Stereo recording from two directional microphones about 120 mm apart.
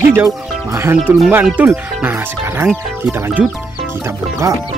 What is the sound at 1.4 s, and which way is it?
Speech, 15° right (ahead or behind).